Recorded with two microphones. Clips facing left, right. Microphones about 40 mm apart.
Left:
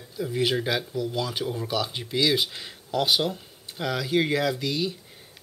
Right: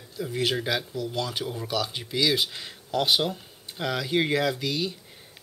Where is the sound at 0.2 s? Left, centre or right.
Centre.